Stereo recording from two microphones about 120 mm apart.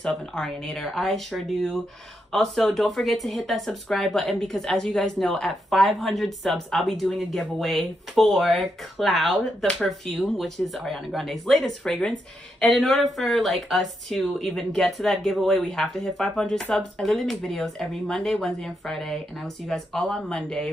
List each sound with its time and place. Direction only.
0.0 s speech: 5° left (ahead or behind)